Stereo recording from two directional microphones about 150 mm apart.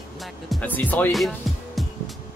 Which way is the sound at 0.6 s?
10° left (ahead or behind).